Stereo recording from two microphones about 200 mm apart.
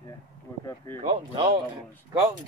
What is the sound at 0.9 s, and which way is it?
Speech, 25° right (ahead or behind).